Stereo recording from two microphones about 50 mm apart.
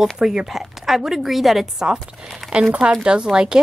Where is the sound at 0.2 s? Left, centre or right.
Centre.